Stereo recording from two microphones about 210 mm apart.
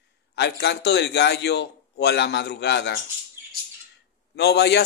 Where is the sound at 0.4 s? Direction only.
55° left (ahead or behind).